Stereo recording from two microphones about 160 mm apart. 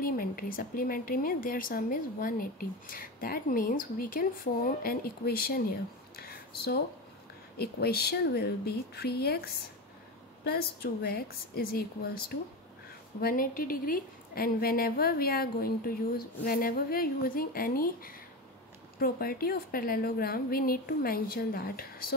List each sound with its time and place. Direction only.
0.0 s a woman's voice: 65° left (ahead or behind)
6.1 s a sound: 75° left (ahead or behind)
7.5 s a woman's voice: 80° left
13.2 s a woman's voice: 60° left (ahead or behind)